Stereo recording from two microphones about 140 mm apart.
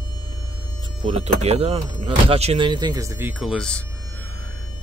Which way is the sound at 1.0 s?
45° right (ahead or behind).